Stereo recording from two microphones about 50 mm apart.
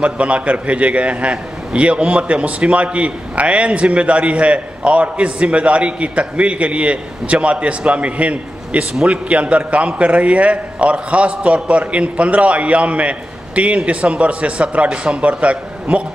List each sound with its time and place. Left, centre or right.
0.0 s a man's voice: right